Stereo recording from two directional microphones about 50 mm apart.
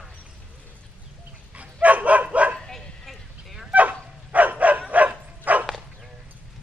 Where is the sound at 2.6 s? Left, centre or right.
Centre.